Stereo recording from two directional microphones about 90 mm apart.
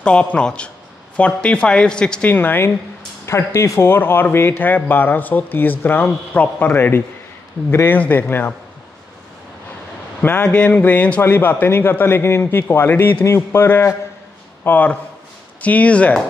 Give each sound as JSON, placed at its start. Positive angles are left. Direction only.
{"t": 0.0, "sound": "speech", "side_deg": 10}
{"t": 2.3, "sound": "speech", "side_deg": 25}
{"t": 10.2, "sound": "speech", "side_deg": 20}